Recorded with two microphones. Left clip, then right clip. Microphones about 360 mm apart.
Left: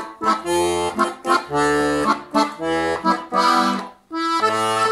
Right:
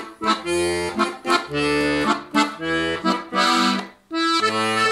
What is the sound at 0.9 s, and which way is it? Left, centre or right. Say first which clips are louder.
Accordion: left 2 dB; centre.